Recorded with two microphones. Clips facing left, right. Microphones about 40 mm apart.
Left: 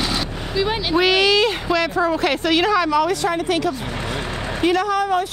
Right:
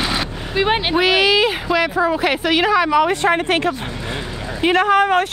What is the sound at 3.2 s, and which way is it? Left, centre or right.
Speech, right.